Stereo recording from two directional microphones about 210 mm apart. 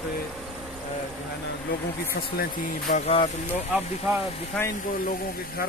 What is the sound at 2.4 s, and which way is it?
Speech, 35° left (ahead or behind).